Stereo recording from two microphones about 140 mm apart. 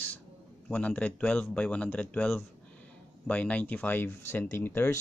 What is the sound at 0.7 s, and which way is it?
Speech, 10° left (ahead or behind).